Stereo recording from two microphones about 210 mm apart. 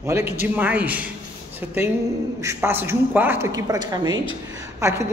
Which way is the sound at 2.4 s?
10° right (ahead or behind).